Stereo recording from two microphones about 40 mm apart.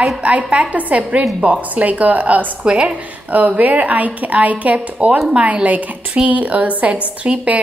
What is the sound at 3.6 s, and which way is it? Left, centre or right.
A woman's voice, right.